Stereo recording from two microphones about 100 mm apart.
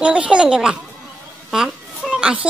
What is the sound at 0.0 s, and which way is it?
A woman's voice, 10° right (ahead or behind).